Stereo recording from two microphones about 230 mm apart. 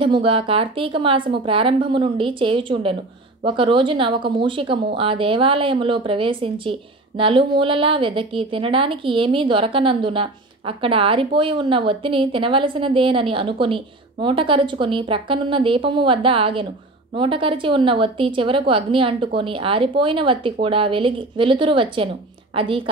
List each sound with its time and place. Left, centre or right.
0.0 s speech: right